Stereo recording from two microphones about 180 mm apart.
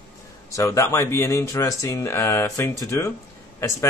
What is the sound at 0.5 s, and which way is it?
A man's voice, 15° left (ahead or behind).